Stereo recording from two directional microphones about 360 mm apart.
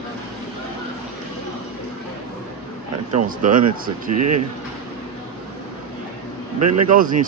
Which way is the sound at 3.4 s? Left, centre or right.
Right.